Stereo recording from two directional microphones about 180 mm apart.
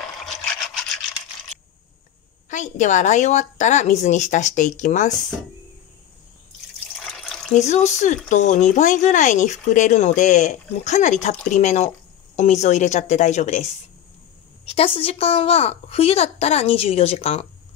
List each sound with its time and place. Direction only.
2.5 s a woman's voice: 45° left (ahead or behind)
7.0 s drip: centre (ahead or behind)
7.5 s speech: 40° left (ahead or behind)
15.0 s speech: 30° left (ahead or behind)